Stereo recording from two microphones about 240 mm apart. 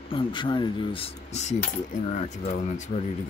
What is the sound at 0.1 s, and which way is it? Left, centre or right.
Speech, left.